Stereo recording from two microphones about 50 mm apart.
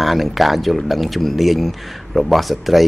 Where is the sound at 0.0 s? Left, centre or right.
Centre.